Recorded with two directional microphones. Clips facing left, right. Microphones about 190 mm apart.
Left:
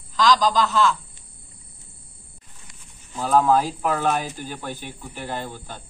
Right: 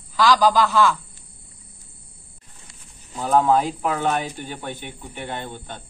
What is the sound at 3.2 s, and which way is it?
A man's voice, 20° right (ahead or behind).